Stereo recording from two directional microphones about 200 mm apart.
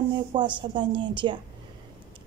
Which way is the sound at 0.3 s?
25° right (ahead or behind).